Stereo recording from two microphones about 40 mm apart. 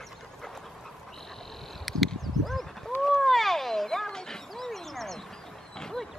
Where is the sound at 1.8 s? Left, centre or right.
Centre.